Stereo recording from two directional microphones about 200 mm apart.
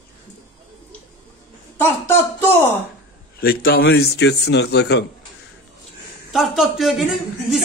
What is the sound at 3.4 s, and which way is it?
A man's voice, 50° left (ahead or behind).